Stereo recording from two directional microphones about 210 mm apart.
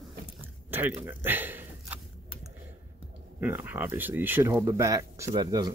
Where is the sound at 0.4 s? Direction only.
10° right (ahead or behind).